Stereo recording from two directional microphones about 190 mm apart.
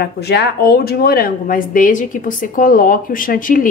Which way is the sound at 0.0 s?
60° left (ahead or behind).